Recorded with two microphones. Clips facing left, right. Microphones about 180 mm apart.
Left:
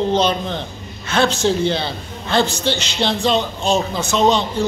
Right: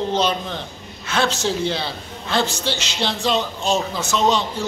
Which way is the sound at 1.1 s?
5° right (ahead or behind).